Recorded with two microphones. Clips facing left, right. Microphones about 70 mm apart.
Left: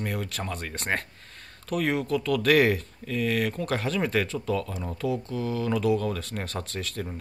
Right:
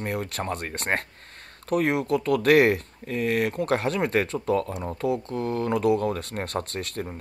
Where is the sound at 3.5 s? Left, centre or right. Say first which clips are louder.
Right 4 dB; right.